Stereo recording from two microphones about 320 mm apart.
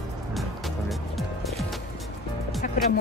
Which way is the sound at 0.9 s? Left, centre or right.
Centre.